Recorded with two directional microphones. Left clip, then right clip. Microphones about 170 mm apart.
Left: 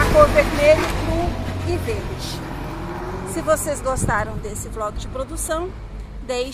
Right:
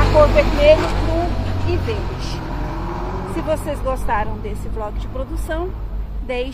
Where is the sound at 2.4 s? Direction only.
40° left (ahead or behind).